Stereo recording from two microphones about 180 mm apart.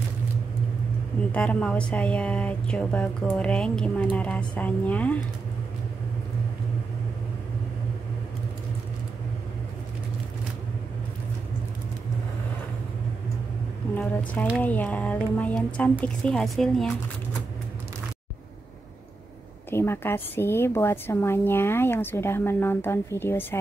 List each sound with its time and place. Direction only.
1.3 s speech: 5° left (ahead or behind)
13.9 s a woman's voice: 10° left (ahead or behind)
19.7 s speech: 15° left (ahead or behind)